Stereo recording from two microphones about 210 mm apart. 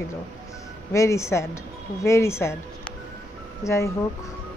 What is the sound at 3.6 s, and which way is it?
Speech, 15° left (ahead or behind).